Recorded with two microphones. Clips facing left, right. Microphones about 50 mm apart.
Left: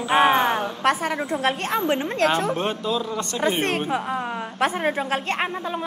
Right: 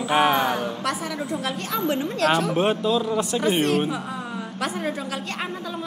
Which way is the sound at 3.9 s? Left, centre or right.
Left.